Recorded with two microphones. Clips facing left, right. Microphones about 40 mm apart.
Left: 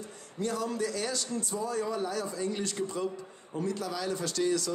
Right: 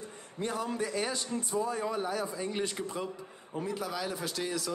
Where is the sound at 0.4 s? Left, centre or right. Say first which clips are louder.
Left 2 dB; right.